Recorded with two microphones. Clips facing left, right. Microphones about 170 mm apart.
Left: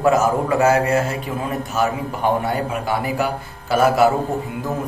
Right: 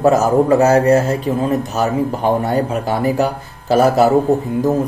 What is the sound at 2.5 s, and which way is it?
Speech, 40° right (ahead or behind).